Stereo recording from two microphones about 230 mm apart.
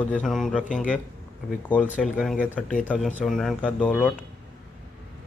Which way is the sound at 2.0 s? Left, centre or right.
Centre.